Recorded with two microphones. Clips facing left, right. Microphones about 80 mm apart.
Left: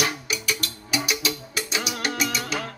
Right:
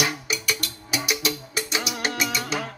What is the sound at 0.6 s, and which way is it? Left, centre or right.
Music, centre.